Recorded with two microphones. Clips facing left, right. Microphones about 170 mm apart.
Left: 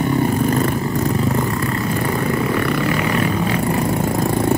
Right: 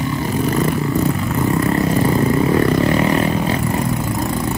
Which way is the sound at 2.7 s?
35° right (ahead or behind).